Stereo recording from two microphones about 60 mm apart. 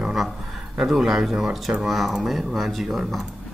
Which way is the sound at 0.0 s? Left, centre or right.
Centre.